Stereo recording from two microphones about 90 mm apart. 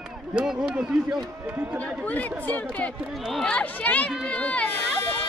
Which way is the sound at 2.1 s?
15° left (ahead or behind).